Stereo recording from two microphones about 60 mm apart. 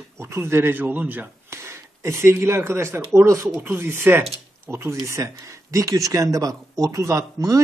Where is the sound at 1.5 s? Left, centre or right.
Right.